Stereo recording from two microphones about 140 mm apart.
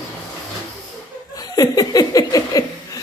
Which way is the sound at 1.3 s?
25° left (ahead or behind).